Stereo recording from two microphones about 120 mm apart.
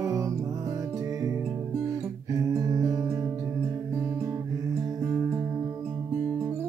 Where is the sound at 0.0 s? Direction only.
25° right (ahead or behind).